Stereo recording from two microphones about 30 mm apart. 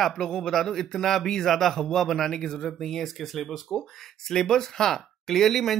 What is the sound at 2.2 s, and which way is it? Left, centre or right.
Speech, left.